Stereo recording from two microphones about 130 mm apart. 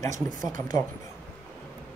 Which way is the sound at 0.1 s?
80° right.